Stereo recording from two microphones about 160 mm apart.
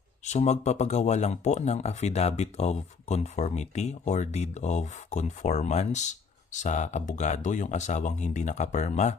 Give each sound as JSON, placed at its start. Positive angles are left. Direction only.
{"t": 0.2, "sound": "speech", "side_deg": 45}